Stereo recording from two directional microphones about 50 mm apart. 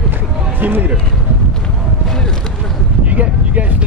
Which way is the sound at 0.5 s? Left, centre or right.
Right.